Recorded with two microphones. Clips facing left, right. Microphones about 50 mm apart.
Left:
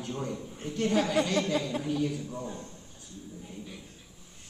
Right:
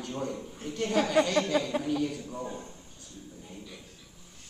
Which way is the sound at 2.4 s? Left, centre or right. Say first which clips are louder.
Right 1 dB; centre.